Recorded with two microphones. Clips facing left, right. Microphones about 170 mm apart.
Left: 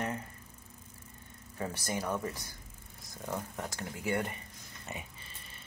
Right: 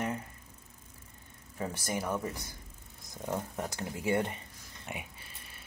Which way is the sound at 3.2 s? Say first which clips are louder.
Right 3 dB; 20° right (ahead or behind).